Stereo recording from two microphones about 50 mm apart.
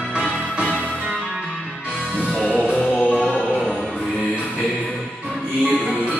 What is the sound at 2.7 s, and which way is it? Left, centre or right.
Music, left.